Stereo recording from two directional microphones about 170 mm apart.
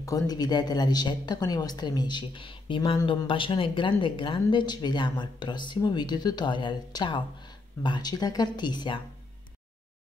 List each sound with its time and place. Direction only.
0.0 s speech: 20° left (ahead or behind)